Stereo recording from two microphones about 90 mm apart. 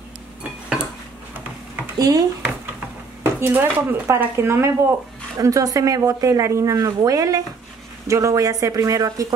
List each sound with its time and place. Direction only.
0.4 s dishes: 10° right (ahead or behind)
2.0 s speech: 45° right (ahead or behind)
3.3 s speech: 20° right (ahead or behind)
5.4 s a woman's voice: 40° right (ahead or behind)